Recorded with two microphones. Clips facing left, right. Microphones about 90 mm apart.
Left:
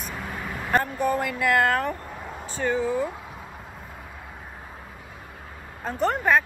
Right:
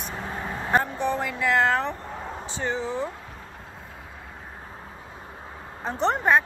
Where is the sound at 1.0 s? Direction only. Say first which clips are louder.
Left 2 dB; 50° left (ahead or behind).